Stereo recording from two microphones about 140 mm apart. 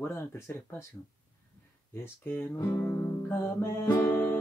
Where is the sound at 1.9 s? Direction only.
15° left (ahead or behind).